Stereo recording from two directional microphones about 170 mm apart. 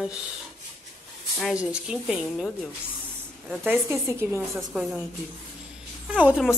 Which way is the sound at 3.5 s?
10° right (ahead or behind).